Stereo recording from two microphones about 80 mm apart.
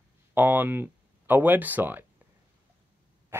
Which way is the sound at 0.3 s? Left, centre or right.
Right.